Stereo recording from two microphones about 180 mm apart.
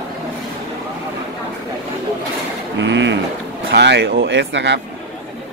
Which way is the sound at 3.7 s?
70° right (ahead or behind).